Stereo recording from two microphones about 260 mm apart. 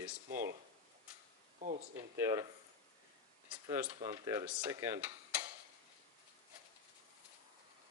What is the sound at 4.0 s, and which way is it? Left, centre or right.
Speech, centre.